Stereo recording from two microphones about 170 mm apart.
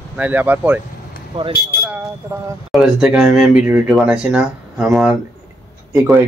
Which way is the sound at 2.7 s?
5° right (ahead or behind).